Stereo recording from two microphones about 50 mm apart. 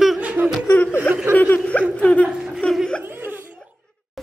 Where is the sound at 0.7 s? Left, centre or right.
Left.